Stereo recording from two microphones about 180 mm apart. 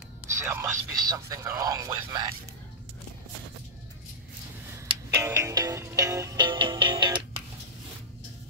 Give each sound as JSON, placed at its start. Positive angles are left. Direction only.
{"t": 0.3, "sound": "speech", "side_deg": -15}
{"t": 5.1, "sound": "music", "side_deg": -15}